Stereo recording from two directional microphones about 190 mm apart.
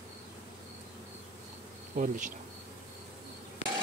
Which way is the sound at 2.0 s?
40° right (ahead or behind).